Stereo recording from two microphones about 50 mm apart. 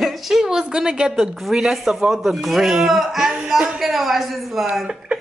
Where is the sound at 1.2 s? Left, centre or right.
Centre.